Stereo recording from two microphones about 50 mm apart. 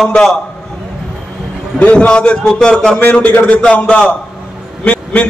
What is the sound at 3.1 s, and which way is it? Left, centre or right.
A man's voice, left.